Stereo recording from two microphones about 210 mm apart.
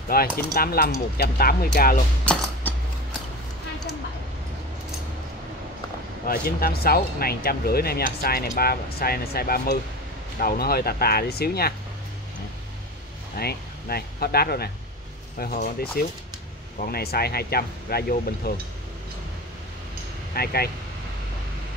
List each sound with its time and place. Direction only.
0.1 s speech: 45° left (ahead or behind)
2.6 s mechanisms: 10° left (ahead or behind)
6.2 s speech: 45° left (ahead or behind)
13.4 s speech: 50° left (ahead or behind)
20.3 s speech: 45° left (ahead or behind)